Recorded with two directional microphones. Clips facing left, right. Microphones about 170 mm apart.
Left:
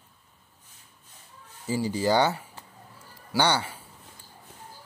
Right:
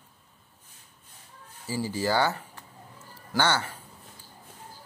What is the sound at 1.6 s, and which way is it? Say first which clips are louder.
Speech: left 3 dB; 20° left (ahead or behind).